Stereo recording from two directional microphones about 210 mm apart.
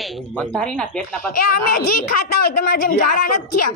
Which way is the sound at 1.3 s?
45° left (ahead or behind).